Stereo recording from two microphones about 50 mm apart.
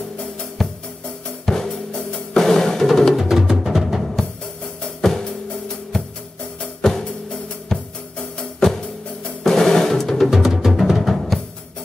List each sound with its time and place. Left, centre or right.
0.6 s music: centre
1.4 s drum: centre
3.3 s music: centre
6.8 s drum: centre
9.4 s drum: centre
10.3 s music: centre